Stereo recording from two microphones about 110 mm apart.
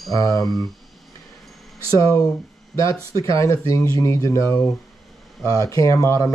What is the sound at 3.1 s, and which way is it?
Speech, 30° left (ahead or behind).